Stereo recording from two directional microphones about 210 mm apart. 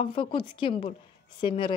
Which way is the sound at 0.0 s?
25° left (ahead or behind).